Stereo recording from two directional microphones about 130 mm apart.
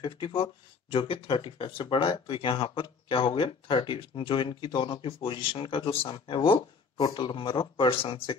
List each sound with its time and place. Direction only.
0.0 s speech: 40° left (ahead or behind)